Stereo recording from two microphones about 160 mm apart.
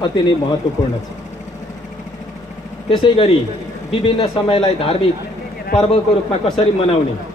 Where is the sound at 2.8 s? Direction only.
35° left (ahead or behind).